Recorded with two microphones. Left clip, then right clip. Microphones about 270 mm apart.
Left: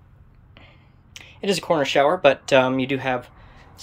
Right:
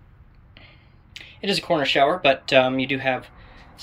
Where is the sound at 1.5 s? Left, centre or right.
Centre.